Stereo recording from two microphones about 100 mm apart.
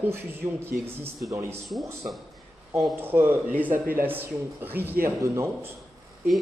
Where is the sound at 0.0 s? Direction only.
25° right (ahead or behind).